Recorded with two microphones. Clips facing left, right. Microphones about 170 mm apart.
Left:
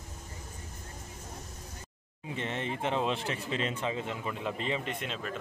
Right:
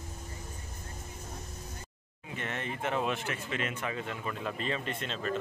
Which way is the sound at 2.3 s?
25° left (ahead or behind).